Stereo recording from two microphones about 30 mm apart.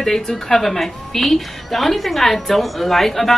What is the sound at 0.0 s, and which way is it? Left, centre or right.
A woman's voice, centre.